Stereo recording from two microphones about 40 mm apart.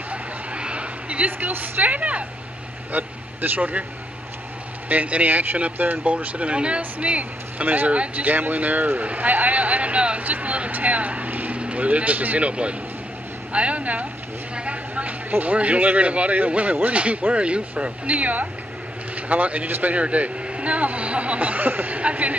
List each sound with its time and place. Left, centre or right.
0.1 s a sound: right
1.5 s a man's voice: right
2.9 s speech: right
4.8 s speech: right
6.0 s a man's voice: right
7.9 s a man's voice: right
8.3 s a man's voice: right
11.5 s a man's voice: right
21.9 s a man's voice: right